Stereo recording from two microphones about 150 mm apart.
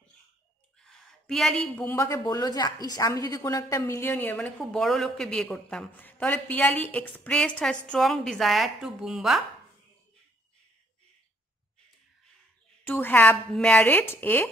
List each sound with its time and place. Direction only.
0.7 s a man's voice: 5° left (ahead or behind)
12.8 s a woman's voice: 10° left (ahead or behind)